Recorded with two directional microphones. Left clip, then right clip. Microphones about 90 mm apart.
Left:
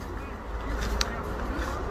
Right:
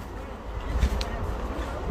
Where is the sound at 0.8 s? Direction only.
20° right (ahead or behind).